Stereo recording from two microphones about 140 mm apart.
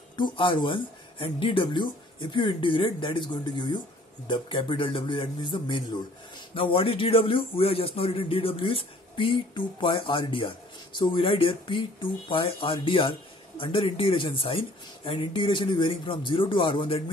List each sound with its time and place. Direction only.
0.1 s speech: 35° left (ahead or behind)